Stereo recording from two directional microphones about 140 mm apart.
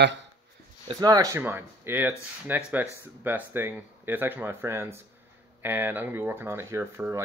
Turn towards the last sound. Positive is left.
turn(degrees=-20)  # may be behind; listen again after turning